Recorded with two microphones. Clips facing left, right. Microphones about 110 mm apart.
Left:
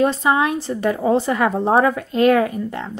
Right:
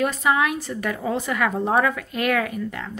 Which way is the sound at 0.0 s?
30° left (ahead or behind).